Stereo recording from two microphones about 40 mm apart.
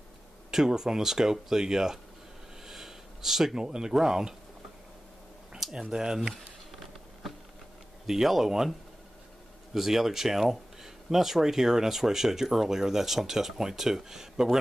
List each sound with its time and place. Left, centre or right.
0.5 s speech: centre
2.6 s a sound: centre
3.5 s speech: centre
5.6 s speech: centre
7.2 s a sound: centre
8.1 s speech: centre
9.8 s speech: centre